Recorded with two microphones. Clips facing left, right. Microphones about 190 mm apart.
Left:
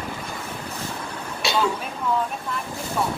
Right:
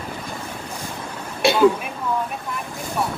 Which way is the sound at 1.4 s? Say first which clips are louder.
Right 6 dB; 55° right (ahead or behind).